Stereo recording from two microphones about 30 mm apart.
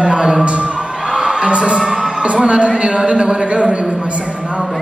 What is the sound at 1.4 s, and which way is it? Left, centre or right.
A man's voice, right.